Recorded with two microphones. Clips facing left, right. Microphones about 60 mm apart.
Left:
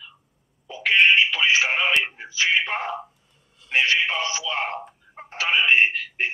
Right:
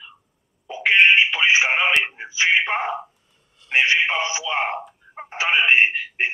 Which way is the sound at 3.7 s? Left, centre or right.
Right.